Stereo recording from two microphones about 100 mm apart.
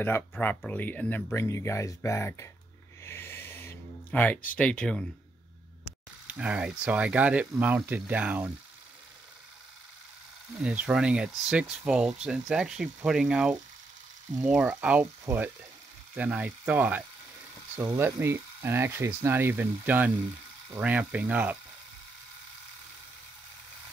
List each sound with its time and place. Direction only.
0.0 s speech: 20° left (ahead or behind)
1.3 s speech: 25° left (ahead or behind)
3.0 s a sound: 25° left (ahead or behind)
4.1 s speech: 15° left (ahead or behind)
6.2 s speech: 10° right (ahead or behind)
10.6 s speech: 10° right (ahead or behind)
15.3 s frying: 30° right (ahead or behind)
16.2 s speech: 15° right (ahead or behind)